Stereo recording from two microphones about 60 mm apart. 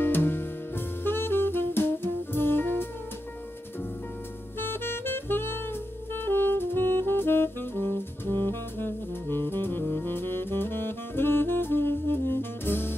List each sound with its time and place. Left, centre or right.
0.0 s saxophone: left
4.6 s saxophone: left